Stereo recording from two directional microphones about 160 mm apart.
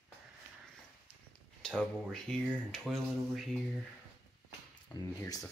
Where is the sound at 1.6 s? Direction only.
Centre (ahead or behind).